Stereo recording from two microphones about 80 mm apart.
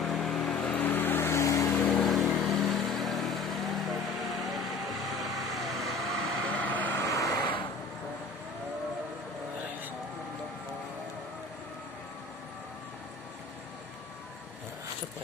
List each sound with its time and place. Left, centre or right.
0.0 s vehicle: centre
0.7 s vehicle: left
1.9 s vehicle: centre
6.5 s vehicle: left
7.1 s vehicle: left